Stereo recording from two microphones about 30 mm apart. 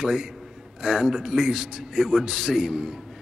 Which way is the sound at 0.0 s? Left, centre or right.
Centre.